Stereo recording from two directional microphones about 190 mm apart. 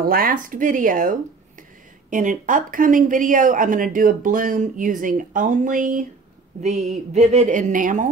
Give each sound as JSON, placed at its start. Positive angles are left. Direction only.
{"t": 0.0, "sound": "a woman's voice", "side_deg": -50}